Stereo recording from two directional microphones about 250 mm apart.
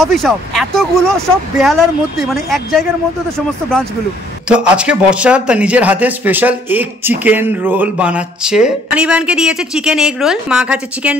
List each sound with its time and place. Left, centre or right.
0.0 s speech: centre
4.5 s speech: centre